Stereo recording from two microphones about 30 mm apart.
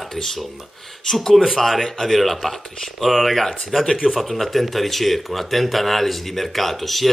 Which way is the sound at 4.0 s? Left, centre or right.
Centre.